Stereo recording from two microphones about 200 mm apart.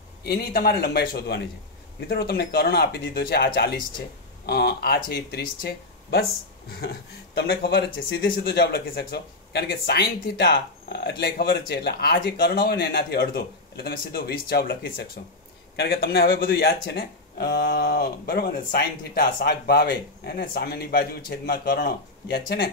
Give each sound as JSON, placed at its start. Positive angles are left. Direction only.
{"t": 0.2, "sound": "speech", "side_deg": 50}
{"t": 7.3, "sound": "speech", "side_deg": 50}